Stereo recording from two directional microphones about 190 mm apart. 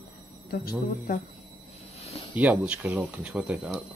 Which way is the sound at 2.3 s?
10° right (ahead or behind).